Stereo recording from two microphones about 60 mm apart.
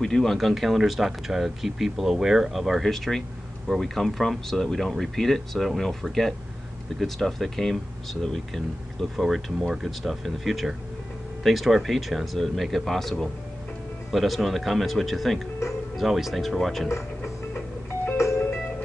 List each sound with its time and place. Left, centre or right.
0.0 s speech: centre
14.1 s speech: centre
17.2 s music: left
18.1 s music: left